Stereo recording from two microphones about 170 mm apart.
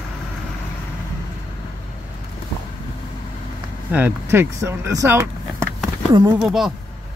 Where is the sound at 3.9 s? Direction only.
10° right (ahead or behind).